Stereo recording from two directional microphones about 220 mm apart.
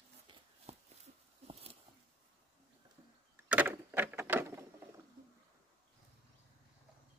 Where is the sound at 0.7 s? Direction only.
30° right (ahead or behind).